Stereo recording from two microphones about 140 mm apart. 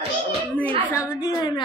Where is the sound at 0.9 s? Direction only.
20° left (ahead or behind).